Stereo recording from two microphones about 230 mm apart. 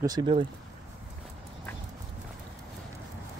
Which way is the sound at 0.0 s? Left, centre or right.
Centre.